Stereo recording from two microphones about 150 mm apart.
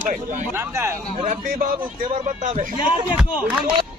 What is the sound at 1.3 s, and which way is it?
Speech, 55° right (ahead or behind).